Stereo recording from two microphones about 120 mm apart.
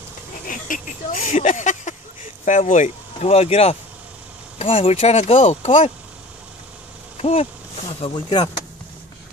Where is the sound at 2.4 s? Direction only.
90° left; by 5.7 s 55° left (ahead or behind).